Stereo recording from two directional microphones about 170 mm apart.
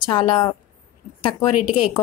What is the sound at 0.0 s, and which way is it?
Speech, 30° left (ahead or behind).